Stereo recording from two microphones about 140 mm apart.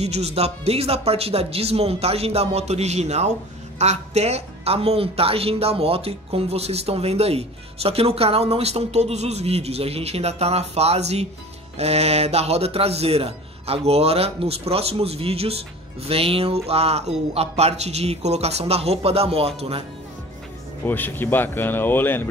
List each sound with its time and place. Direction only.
0.0 s speech: 50° right (ahead or behind)
20.8 s speech: 15° left (ahead or behind)